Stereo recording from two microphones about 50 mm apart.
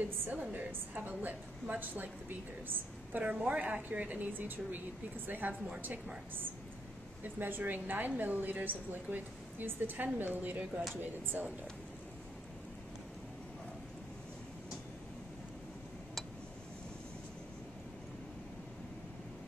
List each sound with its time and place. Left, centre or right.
0.3 s a woman's voice: right
7.3 s a woman's voice: right